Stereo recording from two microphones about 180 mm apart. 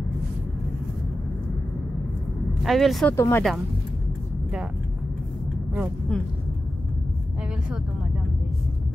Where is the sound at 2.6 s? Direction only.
Centre (ahead or behind).